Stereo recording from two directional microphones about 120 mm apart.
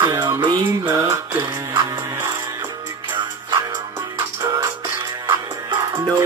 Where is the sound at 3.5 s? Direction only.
30° right (ahead or behind).